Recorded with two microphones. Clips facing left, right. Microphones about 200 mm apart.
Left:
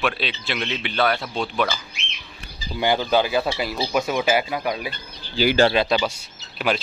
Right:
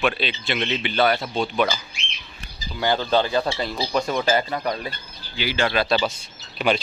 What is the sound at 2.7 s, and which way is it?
Speech, 10° left (ahead or behind).